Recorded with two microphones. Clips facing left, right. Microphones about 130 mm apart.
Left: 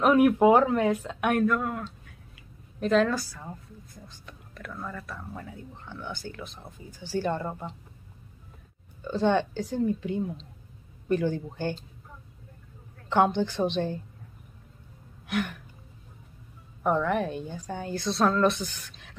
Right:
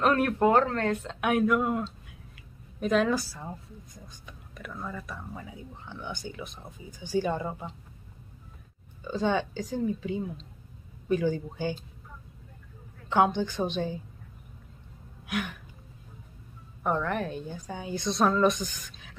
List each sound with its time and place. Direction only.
0.0 s speech: 10° left (ahead or behind)
1.6 s a woman's voice: 20° right (ahead or behind)
2.8 s a woman's voice: 5° right (ahead or behind)
3.2 s a woman's voice: 20° right (ahead or behind)
4.3 s a woman's voice: 5° right (ahead or behind)
9.0 s a woman's voice: 5° right (ahead or behind)
13.1 s speech: 5° right (ahead or behind)
15.2 s a woman's voice: 5° right (ahead or behind)
16.8 s a woman's voice: centre (ahead or behind)